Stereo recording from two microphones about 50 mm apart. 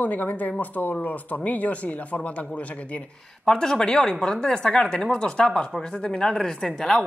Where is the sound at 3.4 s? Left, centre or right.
Centre.